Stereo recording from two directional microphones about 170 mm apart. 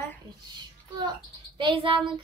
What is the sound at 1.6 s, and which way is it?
Speech, 30° right (ahead or behind).